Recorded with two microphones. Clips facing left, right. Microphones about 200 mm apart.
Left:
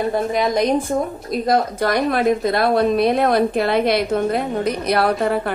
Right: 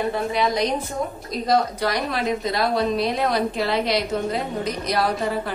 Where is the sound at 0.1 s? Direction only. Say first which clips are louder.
Left 4 dB; 45° left (ahead or behind).